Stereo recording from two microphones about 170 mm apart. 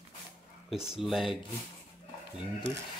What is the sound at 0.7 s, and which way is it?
Speech, 5° right (ahead or behind).